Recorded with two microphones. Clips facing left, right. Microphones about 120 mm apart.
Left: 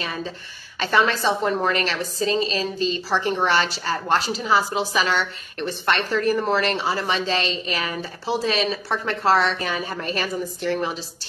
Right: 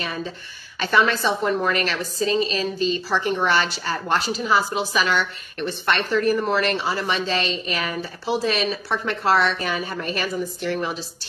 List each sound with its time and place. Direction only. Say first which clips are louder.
0.7 s a woman's voice: even; 35° left (ahead or behind)